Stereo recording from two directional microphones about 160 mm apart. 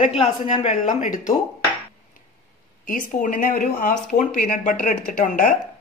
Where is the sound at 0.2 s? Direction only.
45° left (ahead or behind).